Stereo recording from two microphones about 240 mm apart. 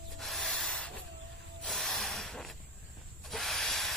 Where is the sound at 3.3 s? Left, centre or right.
Centre.